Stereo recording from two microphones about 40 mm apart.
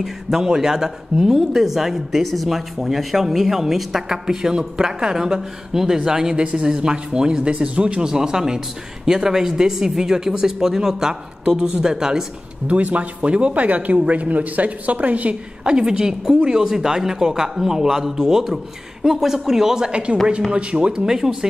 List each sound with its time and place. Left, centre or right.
0.0 s speech: centre; by 8.0 s right
8.0 s speech: centre
11.4 s speech: right
12.6 s speech: right
15.6 s speech: right
19.9 s speech: right